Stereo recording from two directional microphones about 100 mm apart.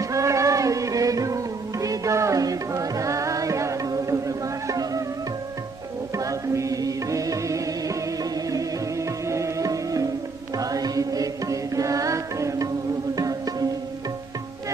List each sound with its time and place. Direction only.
0.0 s music: 30° right (ahead or behind)
6.1 s music: 35° right (ahead or behind)